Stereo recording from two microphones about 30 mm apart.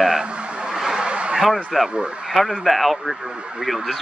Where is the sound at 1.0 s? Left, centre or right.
Right.